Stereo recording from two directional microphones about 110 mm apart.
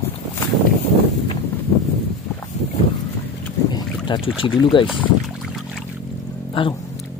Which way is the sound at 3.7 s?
40° left (ahead or behind).